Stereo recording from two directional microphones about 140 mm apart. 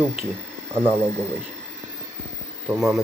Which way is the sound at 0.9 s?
20° right (ahead or behind).